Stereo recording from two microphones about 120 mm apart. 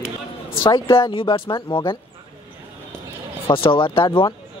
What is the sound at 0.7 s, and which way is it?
Speech, 40° left (ahead or behind).